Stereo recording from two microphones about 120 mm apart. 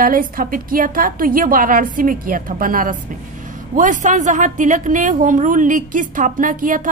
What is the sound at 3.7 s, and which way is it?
A woman's voice, 90° right.